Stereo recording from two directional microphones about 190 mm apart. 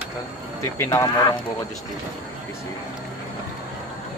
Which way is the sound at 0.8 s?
15° left (ahead or behind).